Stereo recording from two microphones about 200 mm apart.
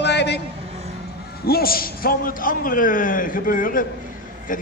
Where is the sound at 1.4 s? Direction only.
50° left (ahead or behind).